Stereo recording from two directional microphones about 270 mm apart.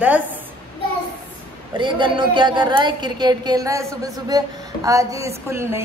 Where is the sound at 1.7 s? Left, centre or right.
Centre.